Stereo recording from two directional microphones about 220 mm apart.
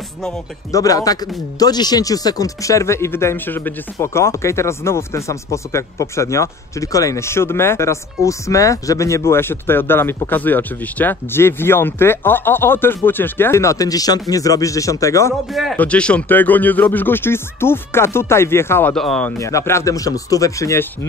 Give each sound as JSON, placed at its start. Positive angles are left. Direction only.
{"t": 0.7, "sound": "speech", "side_deg": 15}
{"t": 15.5, "sound": "speech", "side_deg": 0}
{"t": 19.3, "sound": "speech", "side_deg": 15}